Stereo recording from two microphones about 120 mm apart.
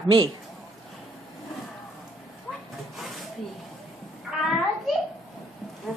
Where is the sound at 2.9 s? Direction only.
Centre (ahead or behind).